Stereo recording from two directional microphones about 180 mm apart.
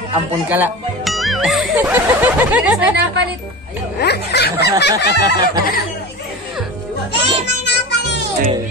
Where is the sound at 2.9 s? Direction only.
65° right (ahead or behind).